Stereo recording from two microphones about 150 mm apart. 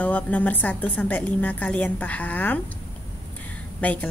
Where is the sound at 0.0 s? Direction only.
10° left (ahead or behind).